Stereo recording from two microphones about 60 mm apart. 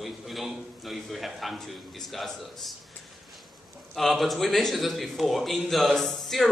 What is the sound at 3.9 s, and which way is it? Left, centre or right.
A man's voice, centre.